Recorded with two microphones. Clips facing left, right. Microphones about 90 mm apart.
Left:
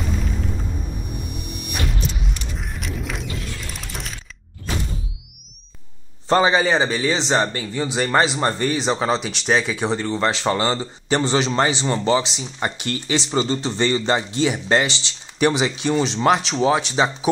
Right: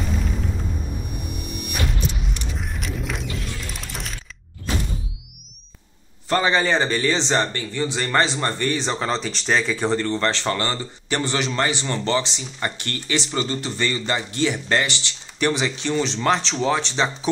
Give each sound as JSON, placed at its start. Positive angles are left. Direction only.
{"t": 2.5, "sound": "a sound", "side_deg": 0}
{"t": 3.7, "sound": "music", "side_deg": 0}
{"t": 6.2, "sound": "a man's voice", "side_deg": 25}
{"t": 6.5, "sound": "speech", "side_deg": 10}